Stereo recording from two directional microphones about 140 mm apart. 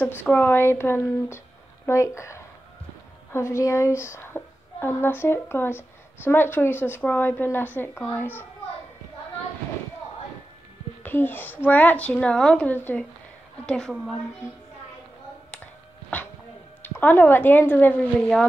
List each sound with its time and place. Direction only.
0.0 s a woman's voice: 15° left (ahead or behind)
11.0 s a woman's voice: 15° left (ahead or behind)
15.5 s a sound: 10° left (ahead or behind)
16.8 s a woman's voice: 15° left (ahead or behind)